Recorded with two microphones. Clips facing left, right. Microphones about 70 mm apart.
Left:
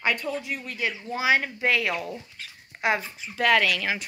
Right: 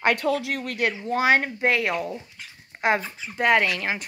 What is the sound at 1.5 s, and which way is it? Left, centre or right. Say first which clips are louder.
Speech: right 2 dB; right.